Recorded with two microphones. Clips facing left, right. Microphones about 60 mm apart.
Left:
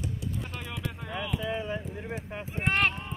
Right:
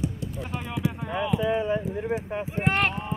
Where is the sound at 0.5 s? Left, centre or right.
Centre.